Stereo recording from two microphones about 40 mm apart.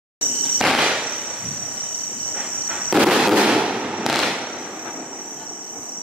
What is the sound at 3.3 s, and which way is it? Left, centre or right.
Fireworks, right.